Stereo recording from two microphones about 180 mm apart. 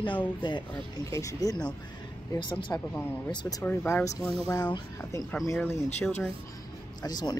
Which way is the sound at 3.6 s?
15° left (ahead or behind).